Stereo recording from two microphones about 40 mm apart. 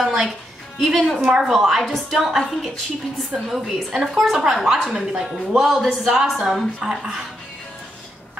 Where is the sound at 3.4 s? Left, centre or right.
Centre.